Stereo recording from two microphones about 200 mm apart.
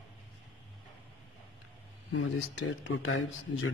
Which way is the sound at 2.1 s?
80° left.